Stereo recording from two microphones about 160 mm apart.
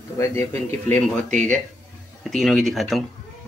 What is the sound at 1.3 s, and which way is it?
Speech, 50° right (ahead or behind).